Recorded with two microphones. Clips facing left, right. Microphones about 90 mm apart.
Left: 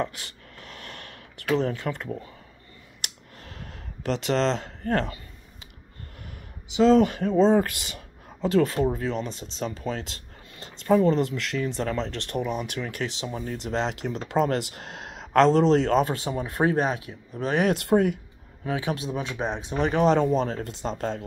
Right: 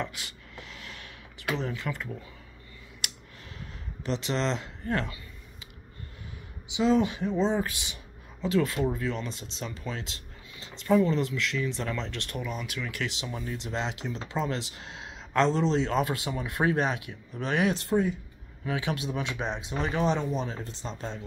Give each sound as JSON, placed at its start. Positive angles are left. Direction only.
{"t": 0.0, "sound": "a sound", "side_deg": 40}
{"t": 1.5, "sound": "speech", "side_deg": 40}
{"t": 3.4, "sound": "a sound", "side_deg": 50}
{"t": 6.8, "sound": "speech", "side_deg": 60}
{"t": 17.6, "sound": "speech", "side_deg": 65}
{"t": 18.7, "sound": "speech", "side_deg": 30}
{"t": 19.7, "sound": "speech", "side_deg": 40}
{"t": 20.2, "sound": "speech", "side_deg": 55}